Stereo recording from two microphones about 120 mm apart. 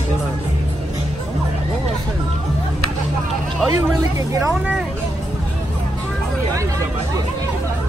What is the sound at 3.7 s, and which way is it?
Speech, 25° right (ahead or behind).